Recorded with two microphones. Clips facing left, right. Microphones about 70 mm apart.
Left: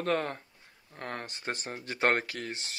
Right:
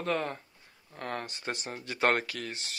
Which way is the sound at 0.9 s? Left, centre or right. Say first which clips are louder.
Right 2 dB; left.